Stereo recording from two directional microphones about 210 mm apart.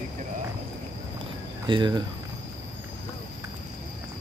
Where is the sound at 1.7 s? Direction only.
20° right (ahead or behind).